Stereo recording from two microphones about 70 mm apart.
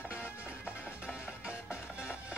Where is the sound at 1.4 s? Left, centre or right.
Centre.